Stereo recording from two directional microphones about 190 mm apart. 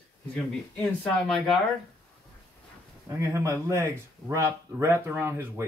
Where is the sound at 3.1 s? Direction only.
15° right (ahead or behind).